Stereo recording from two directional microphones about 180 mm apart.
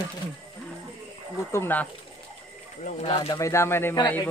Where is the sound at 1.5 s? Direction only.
10° left (ahead or behind).